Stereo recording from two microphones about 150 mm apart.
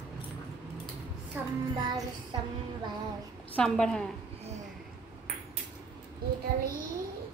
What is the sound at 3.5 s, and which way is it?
Speech, 5° left (ahead or behind).